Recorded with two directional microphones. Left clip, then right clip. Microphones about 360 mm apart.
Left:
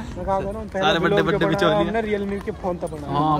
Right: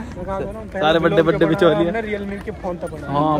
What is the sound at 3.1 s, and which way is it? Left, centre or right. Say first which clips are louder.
Speech: right 2 dB; centre.